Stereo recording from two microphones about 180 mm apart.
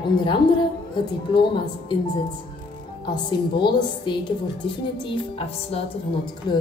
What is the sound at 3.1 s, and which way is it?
A woman's voice, 25° left (ahead or behind).